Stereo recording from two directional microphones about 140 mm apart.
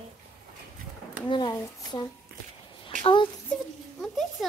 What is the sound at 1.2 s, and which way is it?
A woman's voice, 35° left (ahead or behind).